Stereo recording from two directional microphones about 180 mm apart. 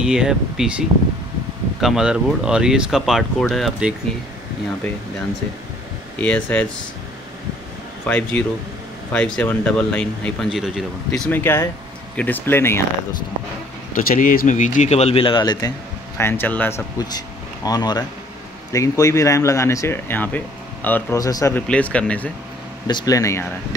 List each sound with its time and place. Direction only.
0.0 s speech: 5° right (ahead or behind)
6.2 s speech: 5° left (ahead or behind)
8.1 s speech: 5° left (ahead or behind)
13.9 s speech: 50° left (ahead or behind); by 15.7 s 25° left (ahead or behind)
16.2 s speech: 10° left (ahead or behind)
17.6 s speech: 20° left (ahead or behind)
21.6 s speech: 5° left (ahead or behind)
22.8 s speech: 20° left (ahead or behind)